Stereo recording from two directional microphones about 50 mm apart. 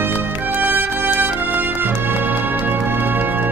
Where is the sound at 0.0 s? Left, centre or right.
Right.